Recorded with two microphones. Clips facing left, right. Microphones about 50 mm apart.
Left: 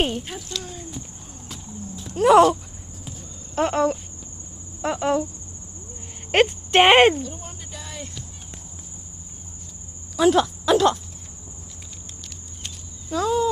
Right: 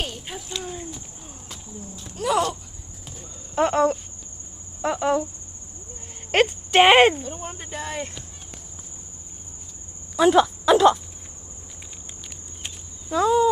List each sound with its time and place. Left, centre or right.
0.5 s a sound: right
1.5 s a sound: centre
2.1 s speech: left
3.5 s speech: centre
4.8 s speech: centre
6.4 s speech: centre
7.2 s a sound: right
10.1 s speech: centre
12.6 s cricket: centre